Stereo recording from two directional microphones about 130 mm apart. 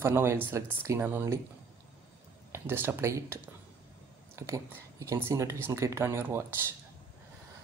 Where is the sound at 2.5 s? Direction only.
15° right (ahead or behind).